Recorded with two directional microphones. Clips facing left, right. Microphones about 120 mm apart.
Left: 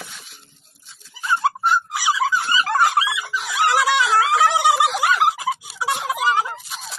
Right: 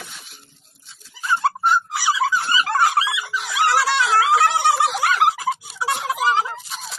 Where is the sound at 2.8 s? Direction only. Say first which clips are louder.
Even; centre (ahead or behind).